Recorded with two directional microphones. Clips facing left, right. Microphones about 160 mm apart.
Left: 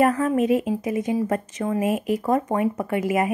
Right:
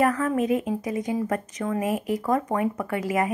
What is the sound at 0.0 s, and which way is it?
Speech, 25° left (ahead or behind).